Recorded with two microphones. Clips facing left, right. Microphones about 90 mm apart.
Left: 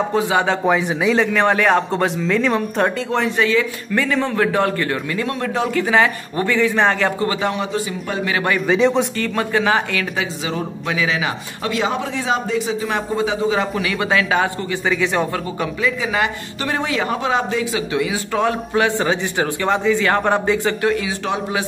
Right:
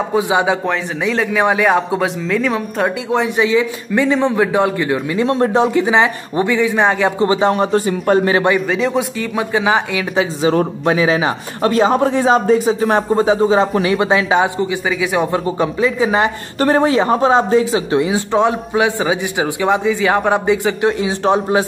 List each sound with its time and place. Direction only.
0.1 s a man's voice: 15° right (ahead or behind)
0.7 s speech: centre (ahead or behind)
3.1 s a man's voice: 15° right (ahead or behind)
5.8 s a man's voice: 20° right (ahead or behind)
7.2 s a man's voice: 30° right (ahead or behind)
7.5 s speech: 45° right (ahead or behind)
8.3 s a man's voice: 25° right (ahead or behind)
8.5 s speech: centre (ahead or behind)
9.2 s a man's voice: 15° right (ahead or behind)
10.1 s a man's voice: 35° right (ahead or behind); by 14.7 s 20° right (ahead or behind)
14.9 s a man's voice: 10° right (ahead or behind)
15.3 s a man's voice: 25° right (ahead or behind)
21.3 s a man's voice: 35° right (ahead or behind)